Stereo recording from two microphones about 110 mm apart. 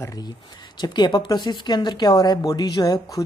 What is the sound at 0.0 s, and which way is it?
Speech, 35° left (ahead or behind).